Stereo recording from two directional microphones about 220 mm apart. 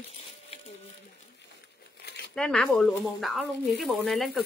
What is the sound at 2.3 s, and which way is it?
Speech, centre (ahead or behind).